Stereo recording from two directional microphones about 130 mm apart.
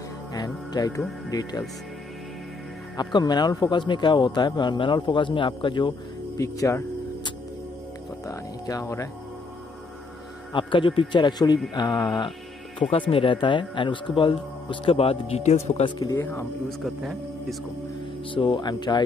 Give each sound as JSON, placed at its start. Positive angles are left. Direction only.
{"t": 0.3, "sound": "speech", "side_deg": 30}
{"t": 3.0, "sound": "a man's voice", "side_deg": 35}
{"t": 6.3, "sound": "speech", "side_deg": 25}
{"t": 8.3, "sound": "speech", "side_deg": 25}
{"t": 10.5, "sound": "a man's voice", "side_deg": 40}
{"t": 16.2, "sound": "speech", "side_deg": 15}
{"t": 16.6, "sound": "a man's voice", "side_deg": 0}
{"t": 18.3, "sound": "a man's voice", "side_deg": 40}